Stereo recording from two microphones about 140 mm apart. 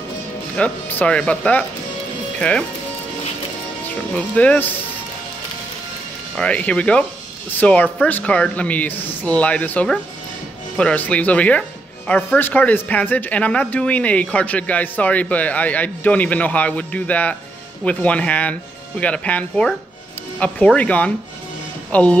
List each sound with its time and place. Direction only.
0.6 s speech: 10° left (ahead or behind)
4.1 s speech: 10° left (ahead or behind)
6.3 s speech: 10° left (ahead or behind)